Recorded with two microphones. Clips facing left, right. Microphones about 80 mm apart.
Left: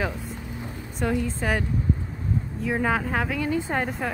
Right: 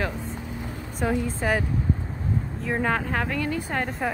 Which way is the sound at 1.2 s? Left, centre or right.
Centre.